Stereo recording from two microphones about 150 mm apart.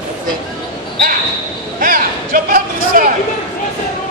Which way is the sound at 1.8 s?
70° right (ahead or behind).